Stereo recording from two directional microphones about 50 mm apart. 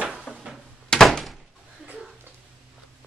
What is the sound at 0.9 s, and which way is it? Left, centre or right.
Door, centre.